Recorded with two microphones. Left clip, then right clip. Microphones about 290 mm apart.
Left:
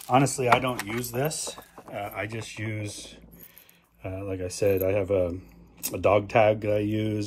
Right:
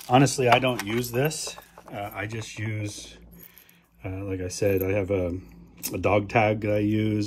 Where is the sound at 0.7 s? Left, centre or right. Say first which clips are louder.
Right 3 dB; centre.